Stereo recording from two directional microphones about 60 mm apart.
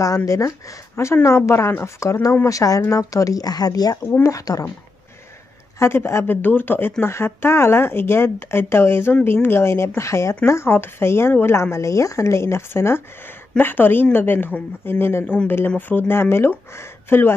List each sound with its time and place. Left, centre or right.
0.0 s speech: left
1.2 s speech: left
2.4 s speech: left
4.2 s speech: left
5.8 s speech: left
6.3 s speech: left
11.7 s speech: left
13.6 s speech: left